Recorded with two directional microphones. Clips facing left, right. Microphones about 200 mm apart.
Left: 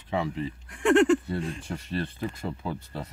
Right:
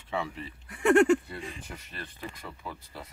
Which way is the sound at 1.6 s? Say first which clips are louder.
Left 11 dB; 30° left (ahead or behind).